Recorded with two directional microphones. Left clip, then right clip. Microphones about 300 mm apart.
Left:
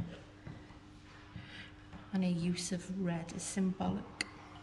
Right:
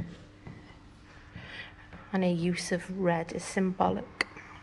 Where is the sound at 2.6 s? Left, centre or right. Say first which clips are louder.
Right 10 dB; centre.